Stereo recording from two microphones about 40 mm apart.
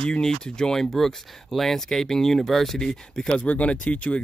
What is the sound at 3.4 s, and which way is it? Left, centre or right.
Speech, left.